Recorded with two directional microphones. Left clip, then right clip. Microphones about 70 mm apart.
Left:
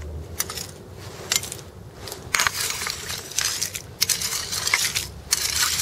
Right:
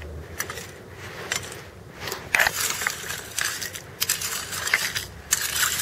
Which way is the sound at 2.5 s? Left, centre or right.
Left.